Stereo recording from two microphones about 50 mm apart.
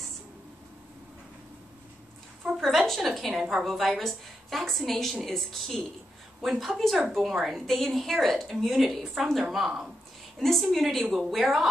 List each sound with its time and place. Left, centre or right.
2.4 s a sound: centre
2.9 s a woman's voice: centre
10.4 s a woman's voice: centre